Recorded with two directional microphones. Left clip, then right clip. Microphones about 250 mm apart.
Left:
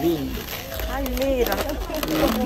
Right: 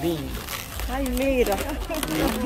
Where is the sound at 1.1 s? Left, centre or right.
Centre.